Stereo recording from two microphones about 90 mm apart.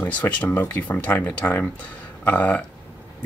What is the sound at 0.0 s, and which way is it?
Speech, 20° left (ahead or behind).